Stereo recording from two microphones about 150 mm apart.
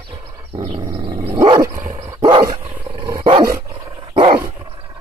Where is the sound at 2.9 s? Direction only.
30° right (ahead or behind).